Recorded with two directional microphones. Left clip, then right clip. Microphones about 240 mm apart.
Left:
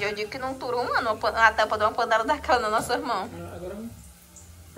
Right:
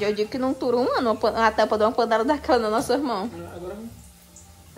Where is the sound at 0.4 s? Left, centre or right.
Right.